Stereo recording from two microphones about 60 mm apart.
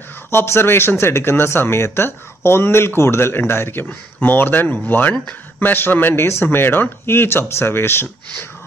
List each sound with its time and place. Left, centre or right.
0.3 s speech: left